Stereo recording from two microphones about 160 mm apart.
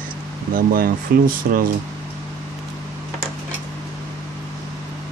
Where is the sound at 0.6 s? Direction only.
60° right (ahead or behind).